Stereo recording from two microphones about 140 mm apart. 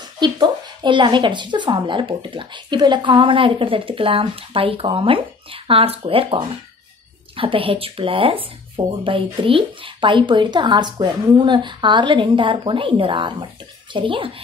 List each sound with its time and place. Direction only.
0.2 s a woman's voice: 35° right (ahead or behind)